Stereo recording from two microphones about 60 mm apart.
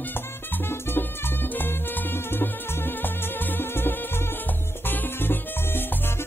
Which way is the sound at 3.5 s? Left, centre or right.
Left.